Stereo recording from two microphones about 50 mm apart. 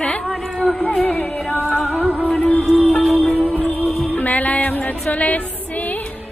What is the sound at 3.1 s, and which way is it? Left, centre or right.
Music, centre.